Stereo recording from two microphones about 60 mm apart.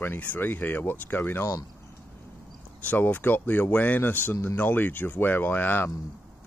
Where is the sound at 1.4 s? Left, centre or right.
Left.